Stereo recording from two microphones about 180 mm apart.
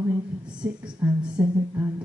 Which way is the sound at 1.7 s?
20° right (ahead or behind).